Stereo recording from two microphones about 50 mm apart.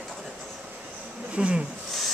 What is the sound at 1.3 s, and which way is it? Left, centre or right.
Speech, right.